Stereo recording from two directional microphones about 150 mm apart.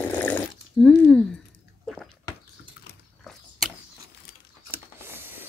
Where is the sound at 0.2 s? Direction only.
10° left (ahead or behind).